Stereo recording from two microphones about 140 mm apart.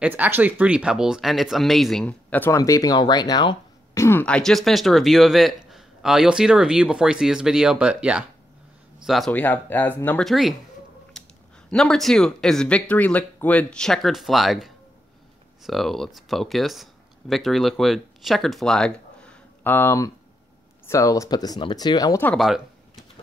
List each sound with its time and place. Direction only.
0.0 s a man's voice: 15° right (ahead or behind); by 2.5 s 10° left (ahead or behind)
2.5 s speech: 25° left (ahead or behind)
4.4 s a man's voice: centre (ahead or behind)
9.3 s speech: 10° left (ahead or behind)
10.2 s a man's voice: centre (ahead or behind)
11.7 s a man's voice: 5° left (ahead or behind); by 22.2 s 30° left (ahead or behind)
22.4 s a sound: centre (ahead or behind)